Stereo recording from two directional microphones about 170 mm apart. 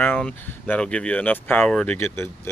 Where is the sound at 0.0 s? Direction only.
10° left (ahead or behind).